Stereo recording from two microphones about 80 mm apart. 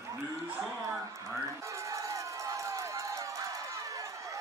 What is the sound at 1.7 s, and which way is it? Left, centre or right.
Run, right.